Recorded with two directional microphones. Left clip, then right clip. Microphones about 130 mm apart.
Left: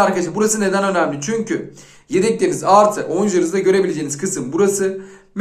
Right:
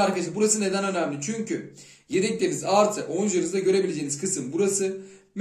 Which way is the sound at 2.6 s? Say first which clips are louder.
Left 10 dB; 20° right (ahead or behind).